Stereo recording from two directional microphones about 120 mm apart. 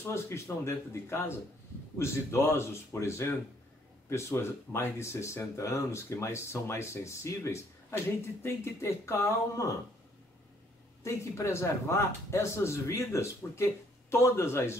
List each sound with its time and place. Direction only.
0.0 s speech: 20° left (ahead or behind)
11.1 s speech: 25° left (ahead or behind)